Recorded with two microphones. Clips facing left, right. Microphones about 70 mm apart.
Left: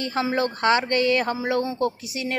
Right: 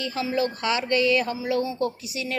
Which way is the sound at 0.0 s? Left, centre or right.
Left.